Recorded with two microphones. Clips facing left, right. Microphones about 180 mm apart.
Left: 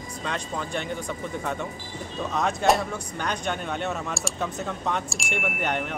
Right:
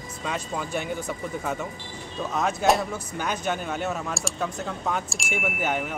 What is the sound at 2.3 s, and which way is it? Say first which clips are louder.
Speech: even; centre (ahead or behind).